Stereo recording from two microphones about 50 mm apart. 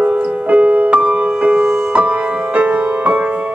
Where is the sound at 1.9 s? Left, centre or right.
Right.